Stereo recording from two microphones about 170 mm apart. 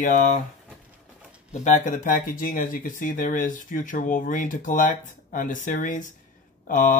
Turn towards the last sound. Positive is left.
turn(degrees=50)  # may be behind; listen again after turning